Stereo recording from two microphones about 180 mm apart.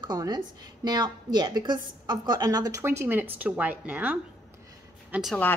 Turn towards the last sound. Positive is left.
turn(degrees=0)  # may be behind; listen again after turning